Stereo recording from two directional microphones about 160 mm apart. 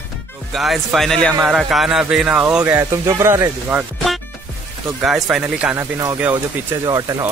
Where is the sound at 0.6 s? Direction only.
Centre (ahead or behind); by 3.8 s 15° right (ahead or behind).